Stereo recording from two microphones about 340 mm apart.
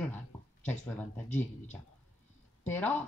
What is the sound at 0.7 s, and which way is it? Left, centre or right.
Speech, centre.